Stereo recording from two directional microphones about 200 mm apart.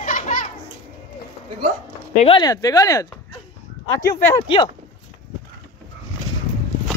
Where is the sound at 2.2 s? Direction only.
25° left (ahead or behind).